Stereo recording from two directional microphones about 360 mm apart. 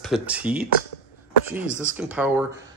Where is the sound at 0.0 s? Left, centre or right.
Centre.